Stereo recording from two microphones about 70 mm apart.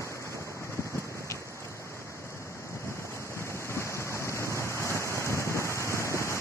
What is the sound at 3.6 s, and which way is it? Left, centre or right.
Rain, left.